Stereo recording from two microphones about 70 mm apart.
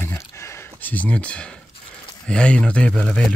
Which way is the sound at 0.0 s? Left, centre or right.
Left.